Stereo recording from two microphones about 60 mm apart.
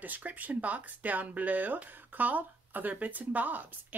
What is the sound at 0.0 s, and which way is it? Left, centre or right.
Speech, right.